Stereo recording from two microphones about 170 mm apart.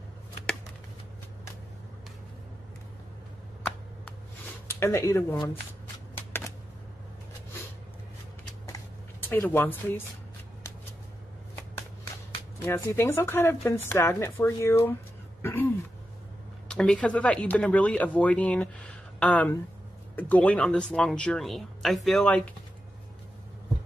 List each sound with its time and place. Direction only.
4.6 s speech: 15° left (ahead or behind)
6.1 s shuffling cards: 15° left (ahead or behind)
9.2 s speech: 10° left (ahead or behind)
12.6 s speech: 15° left (ahead or behind)
16.6 s speech: 5° left (ahead or behind)